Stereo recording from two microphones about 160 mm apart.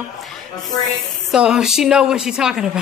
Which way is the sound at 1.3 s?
5° right (ahead or behind).